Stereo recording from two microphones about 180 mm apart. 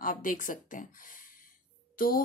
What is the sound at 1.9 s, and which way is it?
Speech, 50° left (ahead or behind).